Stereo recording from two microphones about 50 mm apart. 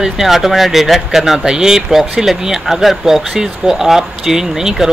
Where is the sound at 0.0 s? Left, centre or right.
Centre.